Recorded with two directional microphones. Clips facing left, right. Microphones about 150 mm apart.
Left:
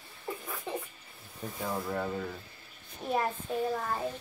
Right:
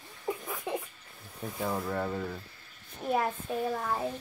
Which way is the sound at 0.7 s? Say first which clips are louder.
Right 3 dB; 15° right (ahead or behind).